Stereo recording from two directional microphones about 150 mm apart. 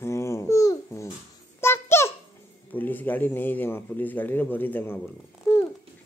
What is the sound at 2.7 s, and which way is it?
A man's voice, 10° left (ahead or behind).